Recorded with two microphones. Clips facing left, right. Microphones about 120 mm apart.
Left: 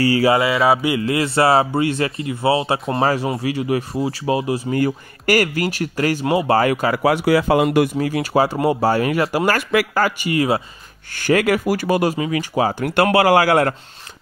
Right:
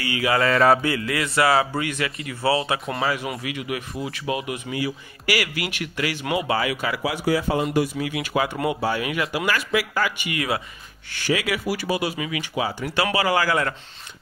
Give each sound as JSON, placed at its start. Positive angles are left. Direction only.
{"t": 0.0, "sound": "speech", "side_deg": 35}
{"t": 0.4, "sound": "mantra", "side_deg": 5}
{"t": 0.9, "sound": "speech", "side_deg": 30}
{"t": 4.7, "sound": "speech", "side_deg": 50}
{"t": 6.4, "sound": "speech", "side_deg": 45}
{"t": 7.1, "sound": "speech", "side_deg": 75}
{"t": 7.9, "sound": "speech", "side_deg": 40}
{"t": 11.1, "sound": "speech", "side_deg": 50}